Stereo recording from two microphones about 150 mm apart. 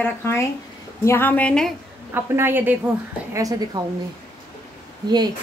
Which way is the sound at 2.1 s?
15° right (ahead or behind).